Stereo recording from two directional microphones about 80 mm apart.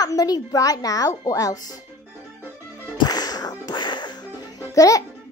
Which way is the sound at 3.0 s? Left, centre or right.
Left.